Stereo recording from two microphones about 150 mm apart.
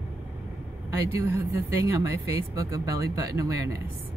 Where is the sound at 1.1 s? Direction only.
15° right (ahead or behind).